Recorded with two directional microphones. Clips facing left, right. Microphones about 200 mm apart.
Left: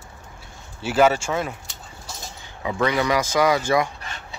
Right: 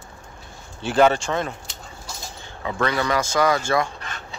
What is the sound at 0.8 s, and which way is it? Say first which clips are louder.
Speech: right 1 dB; 5° left (ahead or behind).